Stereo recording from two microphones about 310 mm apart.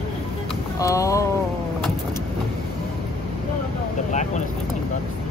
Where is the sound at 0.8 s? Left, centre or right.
Centre.